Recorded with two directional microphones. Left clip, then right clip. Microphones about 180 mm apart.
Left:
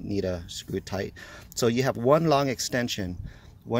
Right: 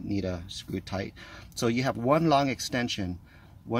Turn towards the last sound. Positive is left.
turn(degrees=35)  # may be behind; listen again after turning